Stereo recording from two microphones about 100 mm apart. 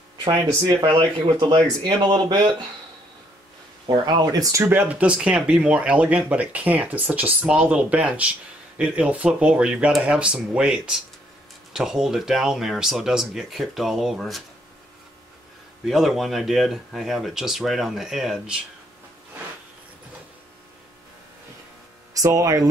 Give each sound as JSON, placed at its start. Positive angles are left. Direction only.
{"t": 0.3, "sound": "speech", "side_deg": -35}
{"t": 1.5, "sound": "speech", "side_deg": -45}
{"t": 4.0, "sound": "speech", "side_deg": -40}
{"t": 4.6, "sound": "speech", "side_deg": -15}
{"t": 15.9, "sound": "speech", "side_deg": 0}
{"t": 22.2, "sound": "speech", "side_deg": -35}